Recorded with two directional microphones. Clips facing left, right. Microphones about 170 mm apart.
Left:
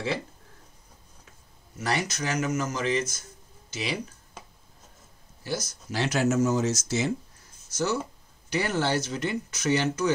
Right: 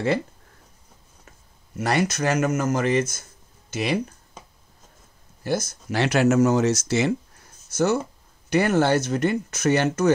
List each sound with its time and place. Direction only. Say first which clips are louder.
1.8 s speech: right 6 dB; 60° right (ahead or behind)
5.4 s speech: right 7 dB; 55° right (ahead or behind); by 7.2 s 70° right (ahead or behind)
7.7 s speech: right 6 dB; 55° right (ahead or behind)